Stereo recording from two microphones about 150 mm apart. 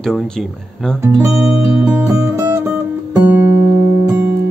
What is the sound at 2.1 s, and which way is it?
Music, 20° right (ahead or behind).